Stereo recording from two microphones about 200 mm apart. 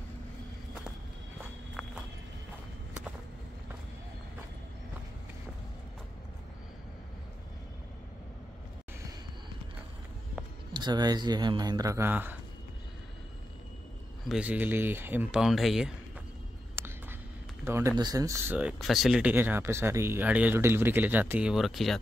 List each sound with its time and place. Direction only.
10.7 s speech: 20° right (ahead or behind)
14.3 s speech: 5° right (ahead or behind)
16.8 s a sound: 10° right (ahead or behind)
17.6 s speech: 15° right (ahead or behind)